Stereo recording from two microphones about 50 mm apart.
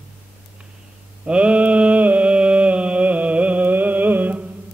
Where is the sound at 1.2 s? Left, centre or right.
Right.